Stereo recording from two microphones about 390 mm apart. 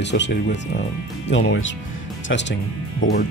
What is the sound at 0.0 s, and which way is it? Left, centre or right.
Speech, left.